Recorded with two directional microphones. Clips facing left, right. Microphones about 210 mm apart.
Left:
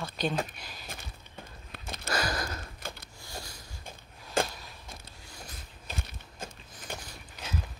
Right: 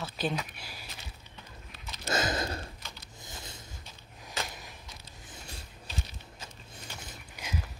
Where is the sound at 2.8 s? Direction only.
50° left (ahead or behind).